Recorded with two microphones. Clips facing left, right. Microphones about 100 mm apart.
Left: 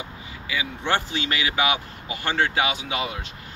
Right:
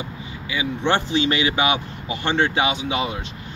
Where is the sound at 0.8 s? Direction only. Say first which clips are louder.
Right 6 dB; 25° right (ahead or behind).